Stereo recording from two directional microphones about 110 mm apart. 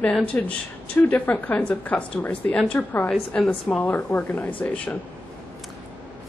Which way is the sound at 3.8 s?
15° left (ahead or behind).